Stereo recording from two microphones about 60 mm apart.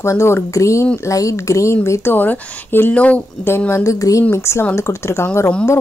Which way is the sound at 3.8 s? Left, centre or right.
Left.